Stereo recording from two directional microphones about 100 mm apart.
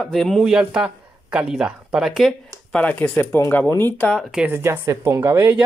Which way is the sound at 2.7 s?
15° left (ahead or behind).